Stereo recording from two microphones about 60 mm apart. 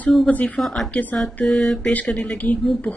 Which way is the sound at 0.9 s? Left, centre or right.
Left.